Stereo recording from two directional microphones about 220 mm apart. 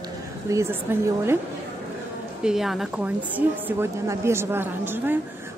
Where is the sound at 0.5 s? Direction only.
10° right (ahead or behind).